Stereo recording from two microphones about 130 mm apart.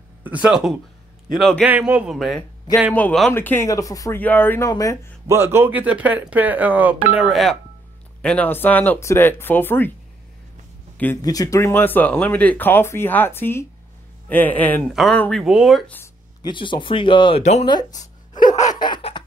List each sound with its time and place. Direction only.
0.2 s speech: 10° right (ahead or behind)
1.6 s speech: 10° right (ahead or behind)
2.1 s speech: centre (ahead or behind); by 4.2 s 25° left (ahead or behind)
4.2 s speech: 15° left (ahead or behind)
4.6 s speech: 30° left (ahead or behind)
5.2 s speech: 20° right (ahead or behind); by 7.5 s centre (ahead or behind)
8.2 s speech: 10° left (ahead or behind)
11.1 s speech: 25° left (ahead or behind)
14.9 s speech: centre (ahead or behind)
15.4 s speech: 5° right (ahead or behind)
16.4 s speech: 35° left (ahead or behind)
17.4 s speech: 60° left (ahead or behind)
17.6 s speech: 30° left (ahead or behind)
18.8 s snicker: 35° left (ahead or behind)